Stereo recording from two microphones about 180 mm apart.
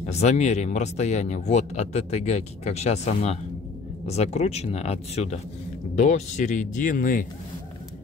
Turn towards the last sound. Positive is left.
turn(degrees=50)  # may be behind; listen again after turning